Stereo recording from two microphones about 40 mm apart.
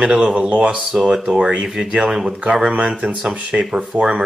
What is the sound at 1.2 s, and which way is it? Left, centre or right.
Speech, right.